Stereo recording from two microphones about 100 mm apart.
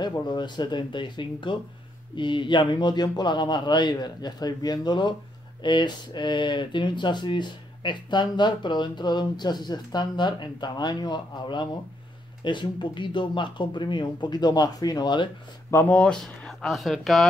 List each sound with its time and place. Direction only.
0.3 s speech: 50° left (ahead or behind)
15.7 s speech: 15° left (ahead or behind)